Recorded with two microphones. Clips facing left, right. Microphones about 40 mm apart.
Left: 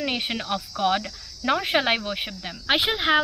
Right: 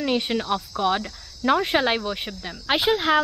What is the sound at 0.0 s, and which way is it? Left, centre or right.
Speech, centre.